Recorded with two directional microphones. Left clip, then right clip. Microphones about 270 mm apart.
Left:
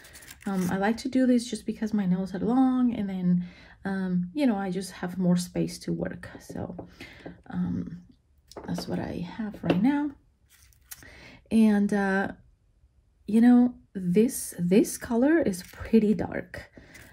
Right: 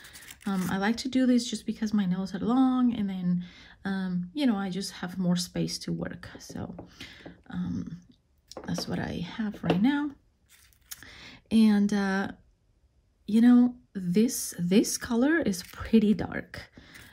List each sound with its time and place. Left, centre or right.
0.7 s speech: centre
10.9 s a sound: centre
13.2 s speech: centre